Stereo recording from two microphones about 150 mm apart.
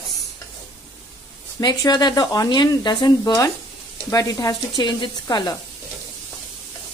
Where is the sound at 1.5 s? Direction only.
25° left (ahead or behind).